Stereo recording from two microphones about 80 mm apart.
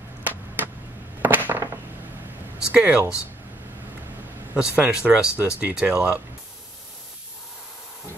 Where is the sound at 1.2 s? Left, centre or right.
Right.